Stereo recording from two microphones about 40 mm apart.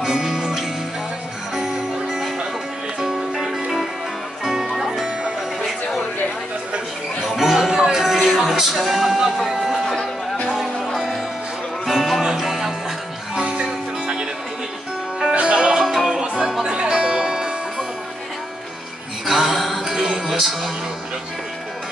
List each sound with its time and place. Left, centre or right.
0.0 s music: centre
7.2 s music: centre
8.7 s music: centre
11.8 s music: centre
13.3 s music: right
15.3 s music: right
15.6 s music: centre
16.7 s music: right
19.2 s music: centre
20.0 s music: right
20.2 s music: centre